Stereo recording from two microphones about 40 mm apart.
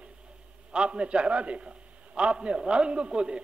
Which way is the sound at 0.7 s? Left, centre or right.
Right.